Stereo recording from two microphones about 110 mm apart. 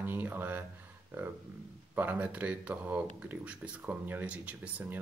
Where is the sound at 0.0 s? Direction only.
20° right (ahead or behind).